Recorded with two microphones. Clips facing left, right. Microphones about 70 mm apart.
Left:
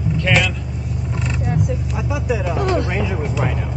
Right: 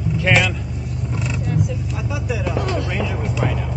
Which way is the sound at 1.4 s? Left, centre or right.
Centre.